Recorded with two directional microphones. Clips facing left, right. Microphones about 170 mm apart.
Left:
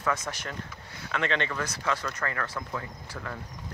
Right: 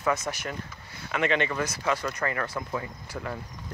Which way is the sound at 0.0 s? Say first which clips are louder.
Right 3 dB; 10° right (ahead or behind).